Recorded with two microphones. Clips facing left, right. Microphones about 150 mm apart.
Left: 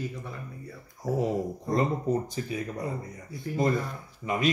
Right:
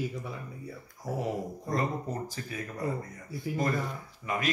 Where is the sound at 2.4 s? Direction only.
20° left (ahead or behind).